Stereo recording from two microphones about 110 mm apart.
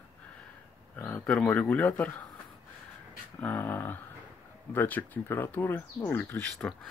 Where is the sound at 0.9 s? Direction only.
15° left (ahead or behind).